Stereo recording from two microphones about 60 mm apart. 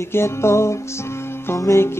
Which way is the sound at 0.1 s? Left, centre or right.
Left.